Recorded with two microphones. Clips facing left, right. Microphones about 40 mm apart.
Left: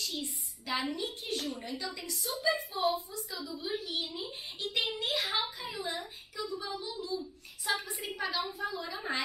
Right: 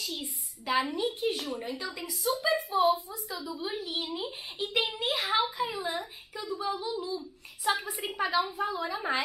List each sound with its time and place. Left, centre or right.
0.0 s a sound: centre
1.0 s a woman's voice: centre
1.6 s a woman's voice: centre
2.0 s a woman's voice: centre
3.3 s a woman's voice: right; by 8.2 s centre
8.2 s a woman's voice: right